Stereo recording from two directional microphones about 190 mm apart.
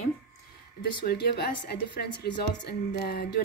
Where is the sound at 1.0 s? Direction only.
60° left (ahead or behind).